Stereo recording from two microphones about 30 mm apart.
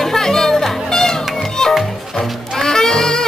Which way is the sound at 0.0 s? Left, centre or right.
Centre.